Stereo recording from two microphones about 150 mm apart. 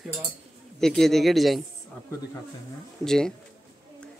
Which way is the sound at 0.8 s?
Centre (ahead or behind).